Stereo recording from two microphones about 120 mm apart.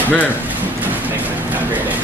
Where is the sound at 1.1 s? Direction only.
15° right (ahead or behind).